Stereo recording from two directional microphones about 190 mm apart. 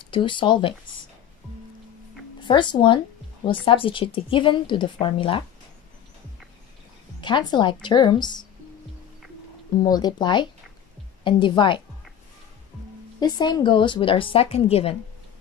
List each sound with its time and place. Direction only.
0.0 s a woman's voice: 25° left (ahead or behind)
2.4 s a woman's voice: 25° left (ahead or behind)
7.2 s a woman's voice: 25° left (ahead or behind)
9.8 s a woman's voice: 20° left (ahead or behind)
13.2 s a woman's voice: 20° left (ahead or behind)